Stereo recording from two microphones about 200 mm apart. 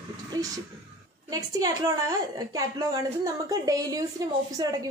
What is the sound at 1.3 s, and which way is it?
A woman's voice, 20° right (ahead or behind).